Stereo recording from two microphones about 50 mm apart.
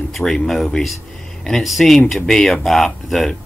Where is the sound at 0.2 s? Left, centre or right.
Left.